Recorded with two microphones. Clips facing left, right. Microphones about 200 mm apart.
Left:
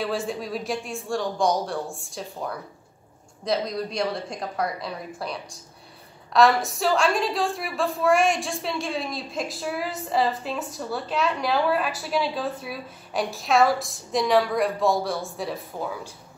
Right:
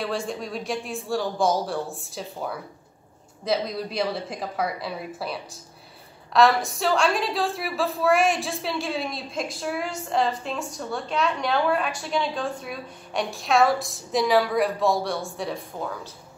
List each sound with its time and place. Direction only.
0.0 s a woman's voice: centre (ahead or behind)